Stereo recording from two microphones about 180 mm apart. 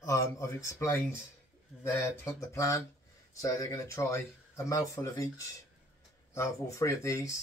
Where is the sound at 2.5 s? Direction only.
15° left (ahead or behind).